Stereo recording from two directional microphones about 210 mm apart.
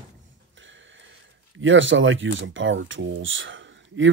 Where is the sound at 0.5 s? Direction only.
60° right (ahead or behind).